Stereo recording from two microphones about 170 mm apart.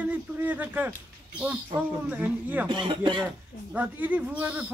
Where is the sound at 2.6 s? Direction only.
30° right (ahead or behind).